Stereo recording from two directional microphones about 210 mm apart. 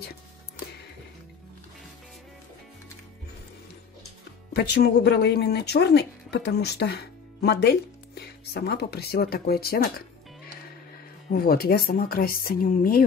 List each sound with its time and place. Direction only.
4.6 s speech: 50° left (ahead or behind)
11.3 s speech: 45° left (ahead or behind)